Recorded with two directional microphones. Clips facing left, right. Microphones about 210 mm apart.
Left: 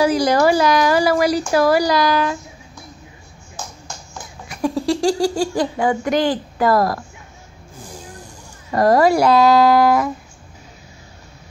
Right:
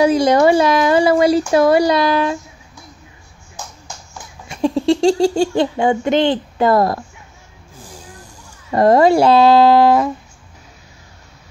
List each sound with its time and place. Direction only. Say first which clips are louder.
0.0 s speech: right 3 dB; 25° right (ahead or behind)
4.5 s speech: right 4 dB; 25° right (ahead or behind)
8.7 s speech: right 3 dB; 25° right (ahead or behind)